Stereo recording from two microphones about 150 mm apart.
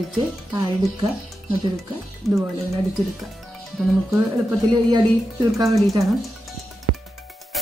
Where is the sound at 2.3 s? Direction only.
Centre (ahead or behind).